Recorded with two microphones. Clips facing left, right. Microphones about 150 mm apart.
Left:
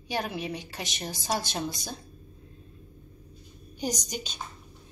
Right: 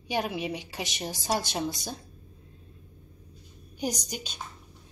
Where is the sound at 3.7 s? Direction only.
10° right (ahead or behind).